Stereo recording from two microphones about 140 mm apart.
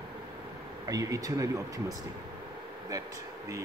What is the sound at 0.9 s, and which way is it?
Speech, 25° right (ahead or behind).